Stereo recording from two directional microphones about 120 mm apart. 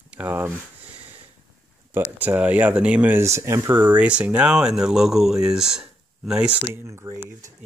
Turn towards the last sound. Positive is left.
turn(degrees=-20)  # may be behind; listen again after turning